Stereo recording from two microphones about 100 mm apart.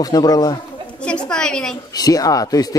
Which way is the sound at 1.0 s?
10° left (ahead or behind).